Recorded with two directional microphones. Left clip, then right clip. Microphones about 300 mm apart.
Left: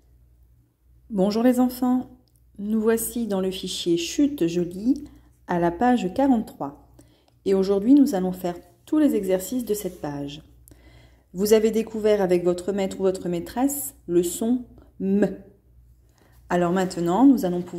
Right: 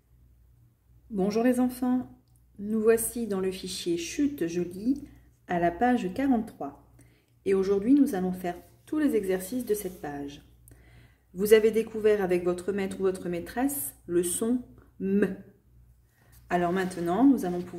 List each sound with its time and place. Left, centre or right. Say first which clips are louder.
1.1 s a woman's voice: left 5 dB; centre
16.4 s speech: left 4 dB; centre